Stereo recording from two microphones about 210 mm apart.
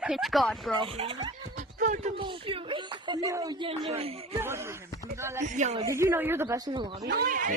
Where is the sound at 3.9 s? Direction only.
30° right (ahead or behind).